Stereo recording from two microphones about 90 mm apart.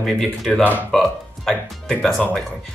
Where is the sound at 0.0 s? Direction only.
Centre (ahead or behind).